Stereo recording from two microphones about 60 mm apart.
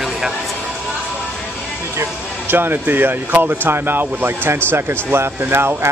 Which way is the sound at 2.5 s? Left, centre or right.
Right.